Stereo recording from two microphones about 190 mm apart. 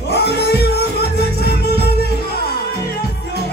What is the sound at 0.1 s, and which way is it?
Music, 60° left (ahead or behind).